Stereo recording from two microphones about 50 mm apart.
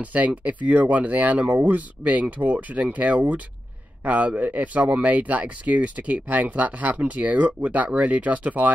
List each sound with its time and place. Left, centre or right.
0.0 s a man's voice: right